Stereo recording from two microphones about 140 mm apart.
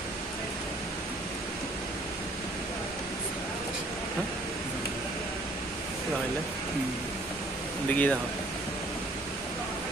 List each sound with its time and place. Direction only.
7.9 s speech: 10° left (ahead or behind)